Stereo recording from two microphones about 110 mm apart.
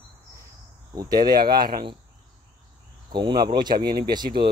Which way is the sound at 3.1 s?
45° right (ahead or behind).